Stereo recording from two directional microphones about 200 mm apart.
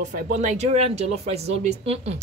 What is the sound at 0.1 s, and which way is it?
A woman's voice, 40° right (ahead or behind).